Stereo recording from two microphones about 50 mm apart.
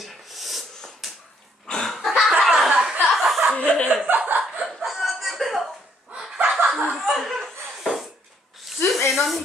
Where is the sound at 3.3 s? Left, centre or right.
Centre.